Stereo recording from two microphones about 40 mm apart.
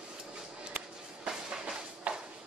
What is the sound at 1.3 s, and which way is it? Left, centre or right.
Music, centre.